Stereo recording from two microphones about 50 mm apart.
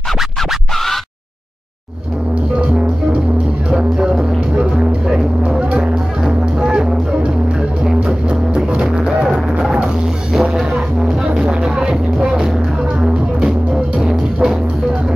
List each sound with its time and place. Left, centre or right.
2.5 s music: right
11.3 s music: centre
13.9 s music: centre